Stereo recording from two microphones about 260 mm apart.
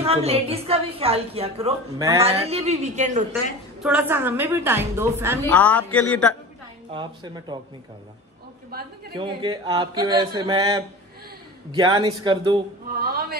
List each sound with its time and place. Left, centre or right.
0.0 s a woman's voice: right
3.8 s speech: centre
5.5 s speech: centre
6.9 s speech: centre
9.1 s speech: centre
13.0 s a man's voice: right